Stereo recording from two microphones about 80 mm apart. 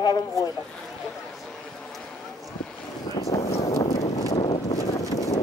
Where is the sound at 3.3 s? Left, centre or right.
Left.